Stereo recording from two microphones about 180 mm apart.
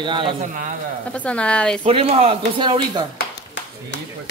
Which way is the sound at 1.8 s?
30° right (ahead or behind).